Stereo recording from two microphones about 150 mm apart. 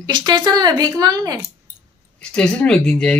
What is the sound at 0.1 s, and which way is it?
Speech, 30° right (ahead or behind).